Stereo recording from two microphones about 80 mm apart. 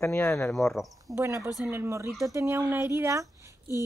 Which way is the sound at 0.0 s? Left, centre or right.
Left.